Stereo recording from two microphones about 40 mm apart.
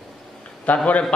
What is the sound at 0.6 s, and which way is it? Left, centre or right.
Speech, left.